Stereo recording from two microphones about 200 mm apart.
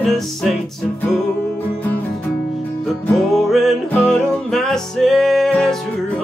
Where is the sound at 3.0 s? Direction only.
Centre (ahead or behind).